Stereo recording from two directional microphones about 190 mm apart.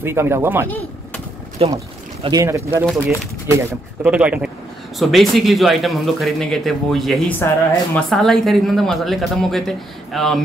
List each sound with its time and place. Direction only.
0.0 s speech: 15° right (ahead or behind)
1.6 s speech: 30° right (ahead or behind)
2.2 s a woman's voice: 15° right (ahead or behind); by 10.4 s centre (ahead or behind)